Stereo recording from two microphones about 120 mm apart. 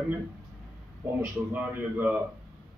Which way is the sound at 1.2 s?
15° right (ahead or behind).